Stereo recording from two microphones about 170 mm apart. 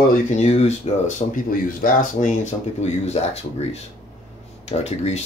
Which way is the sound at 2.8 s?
40° left (ahead or behind).